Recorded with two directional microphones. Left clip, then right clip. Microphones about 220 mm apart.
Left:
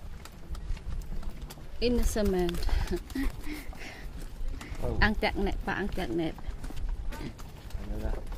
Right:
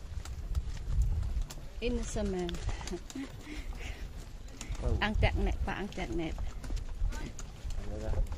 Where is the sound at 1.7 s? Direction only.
30° left (ahead or behind).